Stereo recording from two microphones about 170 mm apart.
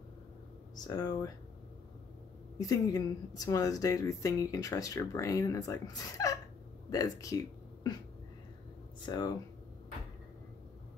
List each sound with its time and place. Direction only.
0.7 s speech: 25° left (ahead or behind)
2.6 s speech: 20° left (ahead or behind)
9.0 s speech: 25° left (ahead or behind)